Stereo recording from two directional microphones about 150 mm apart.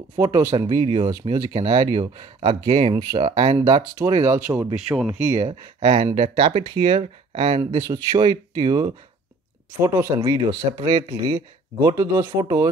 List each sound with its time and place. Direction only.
0.2 s speech: 20° right (ahead or behind); by 2.9 s 40° right (ahead or behind)
2.9 s speech: 25° right (ahead or behind)
3.2 s speech: 40° right (ahead or behind)
3.5 s speech: 25° right (ahead or behind)
4.7 s speech: 5° right (ahead or behind)
5.5 s speech: 35° right (ahead or behind)
7.7 s speech: 25° right (ahead or behind)